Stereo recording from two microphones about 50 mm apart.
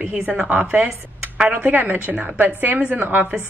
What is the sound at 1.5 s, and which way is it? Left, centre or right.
A woman's voice, right.